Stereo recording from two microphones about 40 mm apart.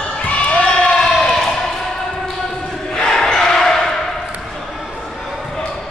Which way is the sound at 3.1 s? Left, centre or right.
Centre.